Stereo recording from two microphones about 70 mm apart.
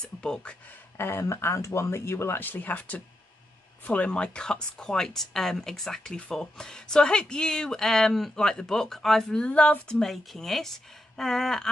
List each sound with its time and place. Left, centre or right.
0.0 s speech: centre
0.9 s speech: left
2.3 s speech: left; by 9.5 s centre
9.5 s speech: centre